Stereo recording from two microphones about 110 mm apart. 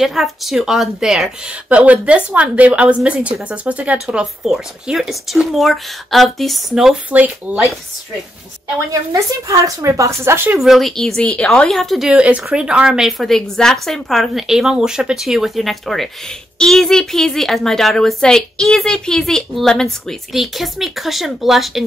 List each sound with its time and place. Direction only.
0.0 s speech: centre (ahead or behind)
9.1 s speech: 30° right (ahead or behind)
10.6 s a woman's voice: centre (ahead or behind)